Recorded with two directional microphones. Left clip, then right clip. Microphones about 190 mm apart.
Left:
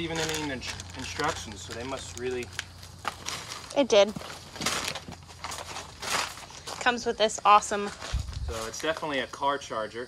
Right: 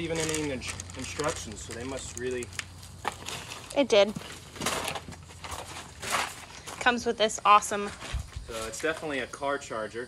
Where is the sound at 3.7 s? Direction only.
15° left (ahead or behind).